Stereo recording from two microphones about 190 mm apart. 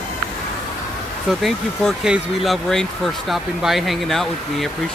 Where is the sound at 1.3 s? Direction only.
Centre (ahead or behind).